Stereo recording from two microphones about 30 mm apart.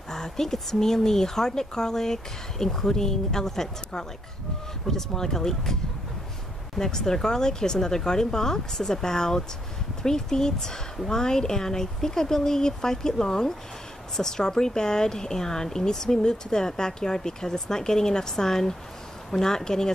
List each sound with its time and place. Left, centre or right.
0.1 s speech: centre
6.8 s speech: centre